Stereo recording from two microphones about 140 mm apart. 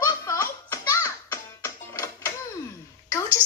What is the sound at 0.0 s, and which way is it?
Music, 25° left (ahead or behind).